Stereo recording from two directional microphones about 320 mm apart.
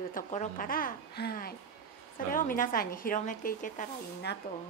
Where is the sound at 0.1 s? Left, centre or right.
Left.